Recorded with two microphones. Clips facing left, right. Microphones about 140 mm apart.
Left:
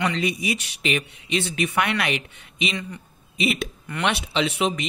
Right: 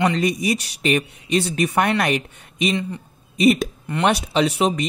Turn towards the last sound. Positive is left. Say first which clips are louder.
# right 4 dB
turn(degrees=-40)  # may be behind; listen again after turning